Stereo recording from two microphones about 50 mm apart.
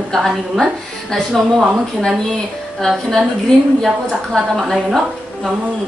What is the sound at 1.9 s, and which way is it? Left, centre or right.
A woman's voice, centre.